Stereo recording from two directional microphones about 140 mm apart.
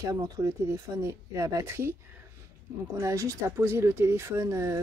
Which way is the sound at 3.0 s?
20° right (ahead or behind).